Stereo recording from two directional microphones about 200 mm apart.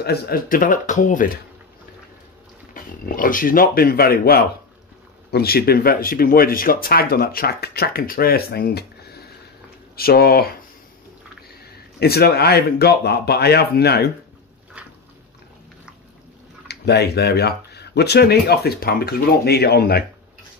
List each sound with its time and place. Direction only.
0.0 s speech: 50° left (ahead or behind)
2.7 s speech: 45° left (ahead or behind)
11.6 s speech: 50° left (ahead or behind)
14.8 s biting: 5° right (ahead or behind)
16.6 s speech: 55° left (ahead or behind)